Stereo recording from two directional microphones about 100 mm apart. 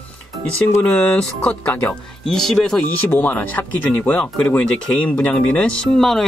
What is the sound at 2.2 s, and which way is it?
Speech, 5° left (ahead or behind).